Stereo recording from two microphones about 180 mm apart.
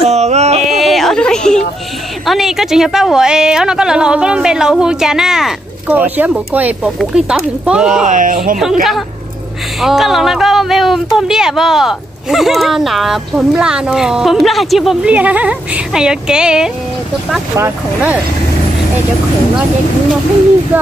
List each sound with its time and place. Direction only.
0.0 s a sound: 40° right (ahead or behind)
0.7 s a sound: centre (ahead or behind)
2.2 s speech: centre (ahead or behind)
8.1 s speech: 45° right (ahead or behind)
9.8 s speech: centre (ahead or behind)
20.7 s speech: 10° right (ahead or behind)